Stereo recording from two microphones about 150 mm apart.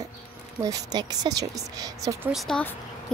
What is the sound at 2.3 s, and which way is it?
Speech, centre (ahead or behind).